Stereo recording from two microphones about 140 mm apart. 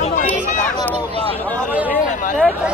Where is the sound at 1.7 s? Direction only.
10° right (ahead or behind).